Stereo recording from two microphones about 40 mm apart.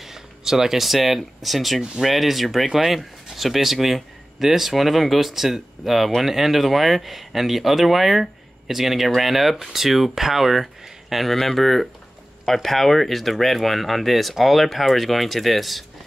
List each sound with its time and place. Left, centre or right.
0.0 s speech: centre